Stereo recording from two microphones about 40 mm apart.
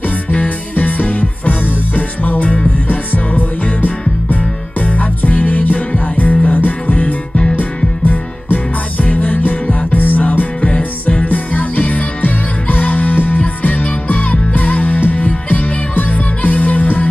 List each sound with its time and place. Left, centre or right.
0.3 s music: left
8.5 s music: left